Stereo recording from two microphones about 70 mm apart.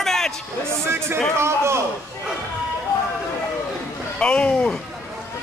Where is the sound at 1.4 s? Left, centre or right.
Right.